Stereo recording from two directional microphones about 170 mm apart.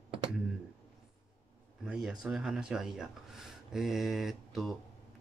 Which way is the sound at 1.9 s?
5° right (ahead or behind).